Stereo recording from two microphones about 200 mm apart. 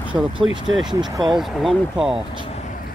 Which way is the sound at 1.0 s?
20° right (ahead or behind).